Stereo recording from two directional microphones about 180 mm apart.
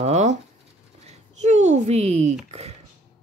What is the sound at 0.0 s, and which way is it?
Speech, 40° right (ahead or behind).